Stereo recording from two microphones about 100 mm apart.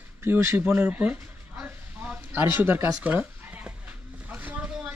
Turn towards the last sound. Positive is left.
turn(degrees=-15)  # may be behind; listen again after turning